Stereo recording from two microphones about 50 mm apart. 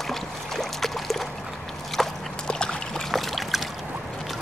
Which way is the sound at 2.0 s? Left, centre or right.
Centre.